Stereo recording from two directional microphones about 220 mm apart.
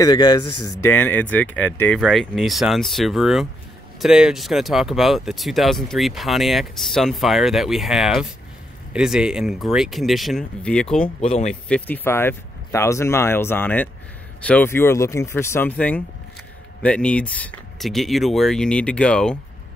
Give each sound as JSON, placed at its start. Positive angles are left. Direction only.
{"t": 0.0, "sound": "speech", "side_deg": 20}
{"t": 11.1, "sound": "speech", "side_deg": 30}
{"t": 11.7, "sound": "speech", "side_deg": 10}